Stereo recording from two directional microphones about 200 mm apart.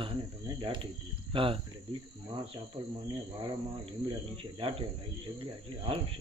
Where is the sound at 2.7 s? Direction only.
25° right (ahead or behind).